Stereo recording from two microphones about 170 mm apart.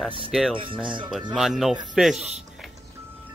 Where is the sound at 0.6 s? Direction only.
30° right (ahead or behind).